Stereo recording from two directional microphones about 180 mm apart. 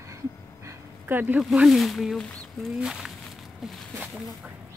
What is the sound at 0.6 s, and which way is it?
Dog, 15° right (ahead or behind).